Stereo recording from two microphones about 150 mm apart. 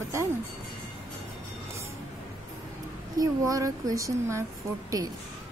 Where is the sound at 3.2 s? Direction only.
25° right (ahead or behind).